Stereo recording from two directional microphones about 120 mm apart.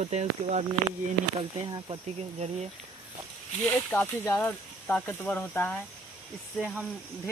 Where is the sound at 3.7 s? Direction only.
15° left (ahead or behind).